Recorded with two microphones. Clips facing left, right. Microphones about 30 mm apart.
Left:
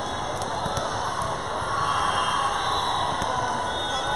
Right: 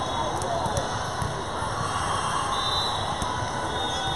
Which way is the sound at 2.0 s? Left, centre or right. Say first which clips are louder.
Left 3 dB; centre.